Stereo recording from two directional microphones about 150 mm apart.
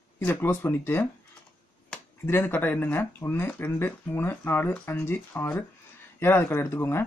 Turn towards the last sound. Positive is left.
turn(degrees=15)  # may be behind; listen again after turning